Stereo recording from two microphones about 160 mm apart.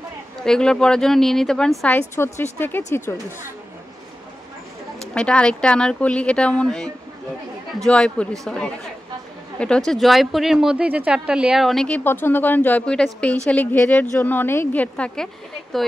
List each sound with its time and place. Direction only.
0.4 s speech: 5° left (ahead or behind)
5.1 s speech: 5° left (ahead or behind)